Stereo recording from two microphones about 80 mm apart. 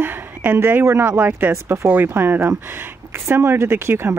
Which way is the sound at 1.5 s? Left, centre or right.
Right.